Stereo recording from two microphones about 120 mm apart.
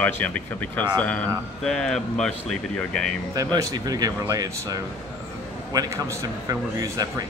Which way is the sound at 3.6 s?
30° right (ahead or behind).